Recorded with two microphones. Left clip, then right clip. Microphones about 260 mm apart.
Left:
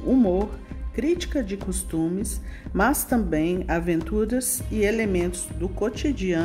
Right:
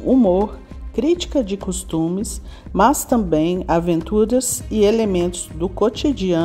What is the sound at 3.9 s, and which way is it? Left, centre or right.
Speech, centre.